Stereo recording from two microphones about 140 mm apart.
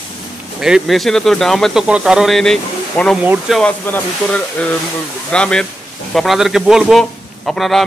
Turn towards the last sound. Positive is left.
turn(degrees=0)  # may be behind; listen again after turning